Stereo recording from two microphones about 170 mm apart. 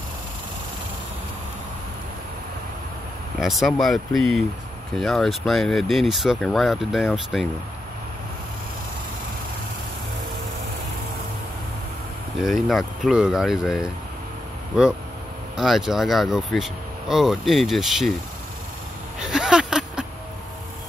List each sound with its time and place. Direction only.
3.3 s speech: centre (ahead or behind)
12.4 s speech: centre (ahead or behind)
15.5 s speech: centre (ahead or behind)
19.2 s a sound: 5° right (ahead or behind)